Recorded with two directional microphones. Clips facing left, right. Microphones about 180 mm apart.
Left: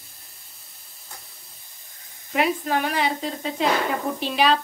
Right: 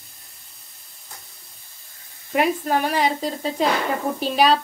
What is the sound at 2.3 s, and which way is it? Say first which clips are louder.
A woman's voice: right 2 dB; 45° right (ahead or behind).